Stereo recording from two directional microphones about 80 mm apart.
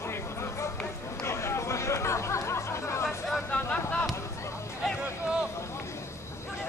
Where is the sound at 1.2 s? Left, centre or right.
Left.